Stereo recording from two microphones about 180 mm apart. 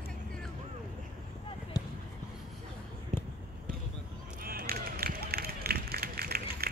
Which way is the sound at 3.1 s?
40° right (ahead or behind).